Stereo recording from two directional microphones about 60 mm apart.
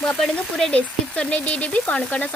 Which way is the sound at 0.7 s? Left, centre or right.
Centre.